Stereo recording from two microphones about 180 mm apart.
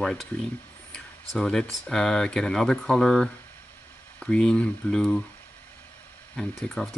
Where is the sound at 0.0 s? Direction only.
Centre (ahead or behind).